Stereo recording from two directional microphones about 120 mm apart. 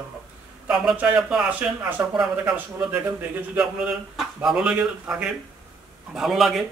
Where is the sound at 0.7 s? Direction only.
10° right (ahead or behind).